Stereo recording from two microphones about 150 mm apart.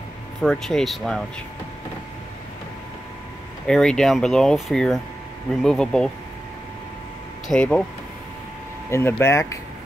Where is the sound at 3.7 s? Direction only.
5° left (ahead or behind).